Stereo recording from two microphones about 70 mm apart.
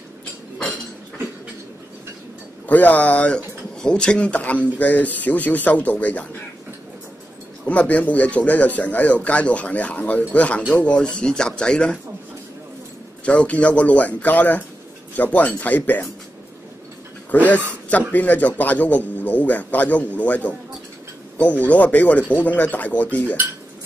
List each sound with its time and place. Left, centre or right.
2.7 s speech: left
7.6 s speech: centre
13.2 s speech: centre
17.3 s speech: left